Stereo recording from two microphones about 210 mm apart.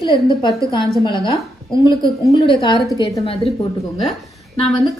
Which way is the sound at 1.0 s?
25° left (ahead or behind).